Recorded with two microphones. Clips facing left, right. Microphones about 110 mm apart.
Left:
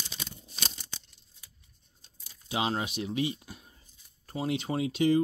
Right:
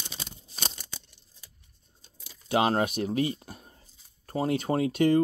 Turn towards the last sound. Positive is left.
turn(degrees=-50)  # may be behind; listen again after turning